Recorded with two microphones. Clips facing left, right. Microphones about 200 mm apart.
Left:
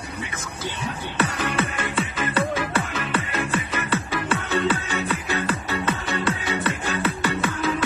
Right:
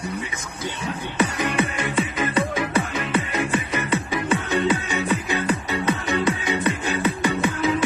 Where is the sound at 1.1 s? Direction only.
15° right (ahead or behind).